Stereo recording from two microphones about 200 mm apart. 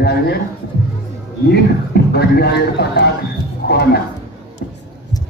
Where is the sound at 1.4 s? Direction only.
55° left (ahead or behind).